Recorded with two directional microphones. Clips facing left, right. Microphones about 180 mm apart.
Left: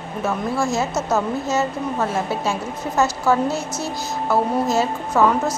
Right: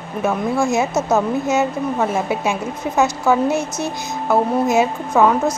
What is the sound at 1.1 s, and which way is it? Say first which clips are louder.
Speech: right 3 dB; 15° right (ahead or behind).